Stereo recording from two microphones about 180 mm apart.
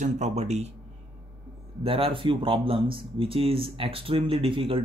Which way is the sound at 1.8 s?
30° right (ahead or behind).